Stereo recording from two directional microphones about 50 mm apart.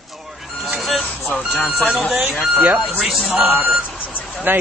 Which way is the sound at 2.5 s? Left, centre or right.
Right.